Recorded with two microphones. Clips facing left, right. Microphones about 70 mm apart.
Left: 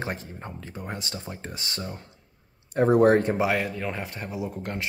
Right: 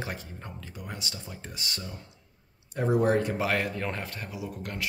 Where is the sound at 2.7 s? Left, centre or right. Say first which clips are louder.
Left 6 dB; left.